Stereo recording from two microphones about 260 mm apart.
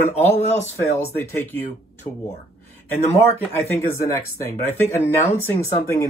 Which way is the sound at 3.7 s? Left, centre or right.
Centre.